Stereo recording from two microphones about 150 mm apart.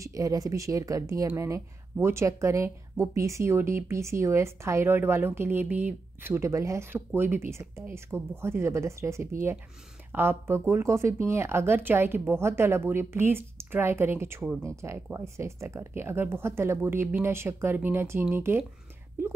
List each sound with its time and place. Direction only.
0.0 s a woman's voice: 25° right (ahead or behind)